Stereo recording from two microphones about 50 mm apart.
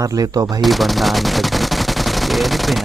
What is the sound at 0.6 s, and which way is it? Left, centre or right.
Speech, centre.